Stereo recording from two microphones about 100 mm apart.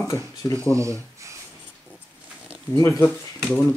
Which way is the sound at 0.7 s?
30° right (ahead or behind).